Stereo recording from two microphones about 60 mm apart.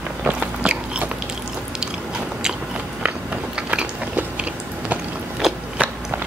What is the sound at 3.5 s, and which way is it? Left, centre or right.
Biting, centre.